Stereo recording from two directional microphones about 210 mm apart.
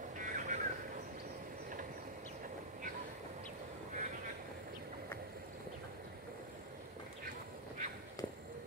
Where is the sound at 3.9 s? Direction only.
35° right (ahead or behind).